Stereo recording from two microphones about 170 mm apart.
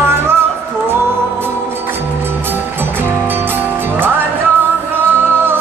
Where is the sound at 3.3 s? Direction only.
10° right (ahead or behind).